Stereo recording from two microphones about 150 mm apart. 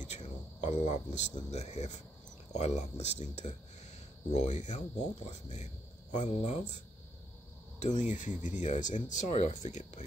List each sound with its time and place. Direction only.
0.0 s a sound: 50° left (ahead or behind)
1.5 s speech: 50° left (ahead or behind)
7.8 s speech: 55° left (ahead or behind)